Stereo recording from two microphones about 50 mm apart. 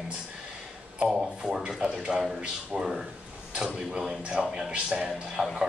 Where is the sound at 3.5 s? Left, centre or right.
Centre.